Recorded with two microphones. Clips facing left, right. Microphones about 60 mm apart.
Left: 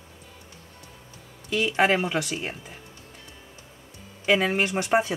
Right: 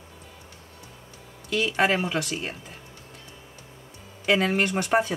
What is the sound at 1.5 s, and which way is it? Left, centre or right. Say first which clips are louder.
Speech: left 1 dB; centre.